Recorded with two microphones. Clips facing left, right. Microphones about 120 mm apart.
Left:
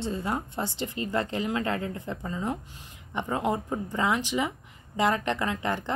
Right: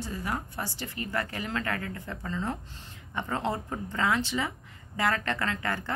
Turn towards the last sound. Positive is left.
turn(degrees=20)  # may be behind; listen again after turning